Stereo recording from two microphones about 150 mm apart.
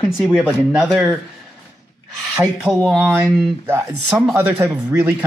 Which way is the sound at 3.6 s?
15° right (ahead or behind).